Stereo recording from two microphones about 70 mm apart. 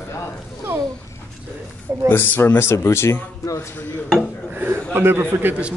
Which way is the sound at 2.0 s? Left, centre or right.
Left.